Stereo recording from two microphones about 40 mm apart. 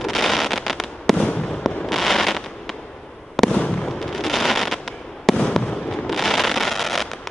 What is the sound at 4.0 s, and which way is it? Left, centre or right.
Fireworks, centre.